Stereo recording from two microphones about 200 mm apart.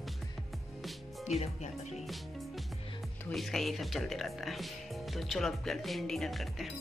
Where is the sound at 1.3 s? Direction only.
35° left (ahead or behind).